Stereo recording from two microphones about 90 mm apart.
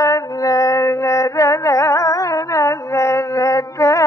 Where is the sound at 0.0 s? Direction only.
40° left (ahead or behind).